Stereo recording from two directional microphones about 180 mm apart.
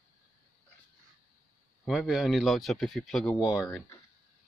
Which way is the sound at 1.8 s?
Centre (ahead or behind).